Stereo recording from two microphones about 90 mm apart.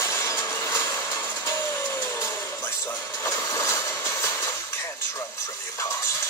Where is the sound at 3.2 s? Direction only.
40° left (ahead or behind).